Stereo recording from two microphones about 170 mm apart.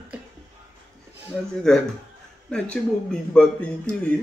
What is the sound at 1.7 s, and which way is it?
A man's voice, 5° left (ahead or behind).